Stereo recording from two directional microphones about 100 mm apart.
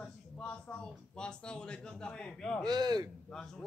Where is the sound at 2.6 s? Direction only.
45° right (ahead or behind).